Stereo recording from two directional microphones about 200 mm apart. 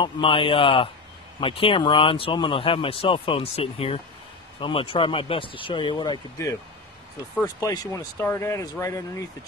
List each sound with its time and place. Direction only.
0.0 s speech: 25° left (ahead or behind)